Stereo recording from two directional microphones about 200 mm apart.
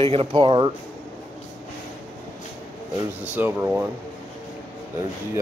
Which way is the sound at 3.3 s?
10° right (ahead or behind).